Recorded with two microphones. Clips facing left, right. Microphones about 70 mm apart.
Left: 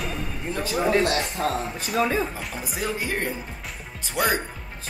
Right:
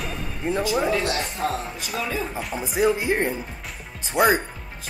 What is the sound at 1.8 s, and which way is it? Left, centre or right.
Speech, left.